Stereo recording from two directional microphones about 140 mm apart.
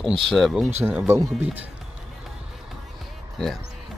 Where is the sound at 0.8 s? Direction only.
15° right (ahead or behind).